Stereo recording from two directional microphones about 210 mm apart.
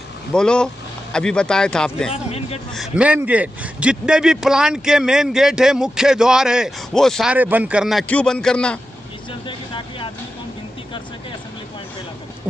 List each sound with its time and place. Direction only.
0.3 s a man's voice: 5° left (ahead or behind)
9.5 s vehicle: 25° left (ahead or behind)